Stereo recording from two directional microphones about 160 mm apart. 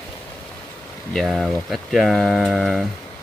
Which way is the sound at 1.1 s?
Centre (ahead or behind).